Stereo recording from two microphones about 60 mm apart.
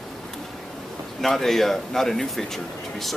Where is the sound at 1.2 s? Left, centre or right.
Centre.